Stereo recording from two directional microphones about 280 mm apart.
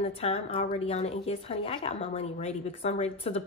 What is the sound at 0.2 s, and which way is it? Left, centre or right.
A woman's voice, left.